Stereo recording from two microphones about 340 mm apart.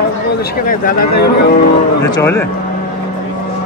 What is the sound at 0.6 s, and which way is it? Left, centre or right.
Speech, left.